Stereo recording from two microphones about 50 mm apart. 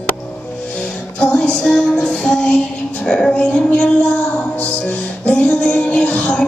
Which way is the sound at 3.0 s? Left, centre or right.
Centre.